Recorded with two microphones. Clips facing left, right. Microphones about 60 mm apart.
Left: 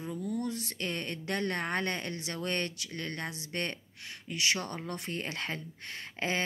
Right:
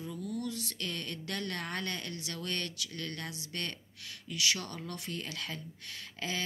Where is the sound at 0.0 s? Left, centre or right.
Left.